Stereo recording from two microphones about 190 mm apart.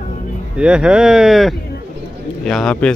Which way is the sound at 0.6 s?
5° right (ahead or behind).